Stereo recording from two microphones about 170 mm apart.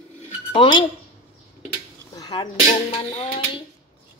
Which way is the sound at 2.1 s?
25° left (ahead or behind).